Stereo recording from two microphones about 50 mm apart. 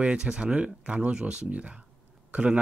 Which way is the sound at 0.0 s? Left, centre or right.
Centre.